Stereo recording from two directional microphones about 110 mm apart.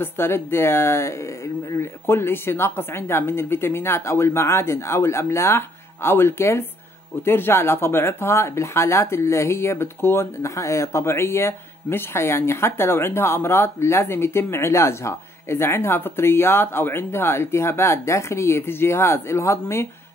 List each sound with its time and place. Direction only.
0.0 s speech: 20° left (ahead or behind)